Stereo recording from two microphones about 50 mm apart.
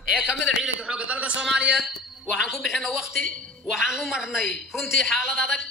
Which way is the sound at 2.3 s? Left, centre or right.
Centre.